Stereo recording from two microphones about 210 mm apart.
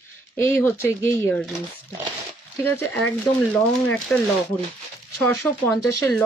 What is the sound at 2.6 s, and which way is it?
Speech, 10° left (ahead or behind).